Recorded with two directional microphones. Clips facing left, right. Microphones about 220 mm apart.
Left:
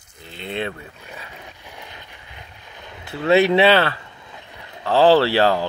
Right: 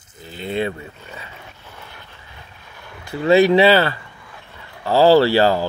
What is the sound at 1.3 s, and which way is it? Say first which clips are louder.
Vehicle: left 1 dB; 15° left (ahead or behind).